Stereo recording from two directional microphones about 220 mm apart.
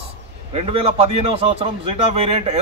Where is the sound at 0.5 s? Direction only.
25° right (ahead or behind).